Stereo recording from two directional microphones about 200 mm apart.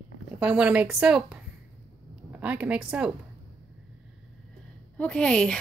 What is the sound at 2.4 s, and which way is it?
Speech, 5° right (ahead or behind).